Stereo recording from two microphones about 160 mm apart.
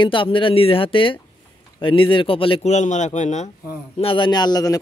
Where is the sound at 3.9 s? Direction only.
30° left (ahead or behind).